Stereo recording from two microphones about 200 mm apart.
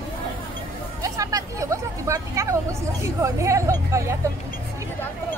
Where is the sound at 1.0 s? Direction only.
15° right (ahead or behind).